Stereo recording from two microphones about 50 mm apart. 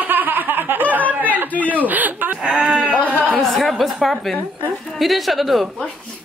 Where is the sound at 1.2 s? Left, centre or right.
Right.